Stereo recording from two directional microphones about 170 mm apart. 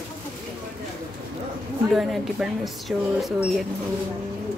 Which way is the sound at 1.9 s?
Centre (ahead or behind).